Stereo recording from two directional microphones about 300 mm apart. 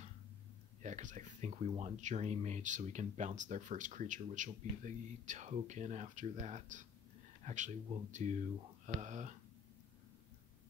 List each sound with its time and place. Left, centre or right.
0.8 s speech: right